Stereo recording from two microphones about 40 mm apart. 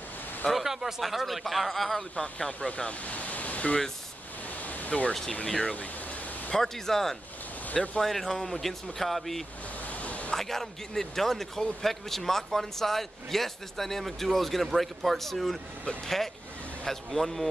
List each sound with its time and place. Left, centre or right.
0.5 s a sound: centre
1.0 s speech: centre
2.1 s speech: left
2.4 s speech: left
2.9 s speech: left
4.6 s pink noise: left
5.6 s speech: left
6.5 s a man's voice: centre
7.7 s speech: left
8.0 s speech: centre
9.8 s a sound: left
10.3 s a man's voice: centre
16.8 s speech: centre